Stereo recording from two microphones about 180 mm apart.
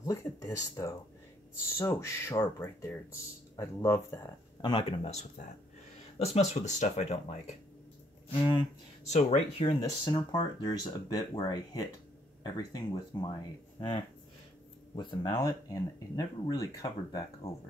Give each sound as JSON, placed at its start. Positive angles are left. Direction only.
{"t": 0.0, "sound": "speech", "side_deg": 15}
{"t": 4.6, "sound": "speech", "side_deg": 25}
{"t": 8.3, "sound": "speech", "side_deg": 25}
{"t": 9.0, "sound": "speech", "side_deg": 40}
{"t": 9.8, "sound": "speech", "side_deg": 25}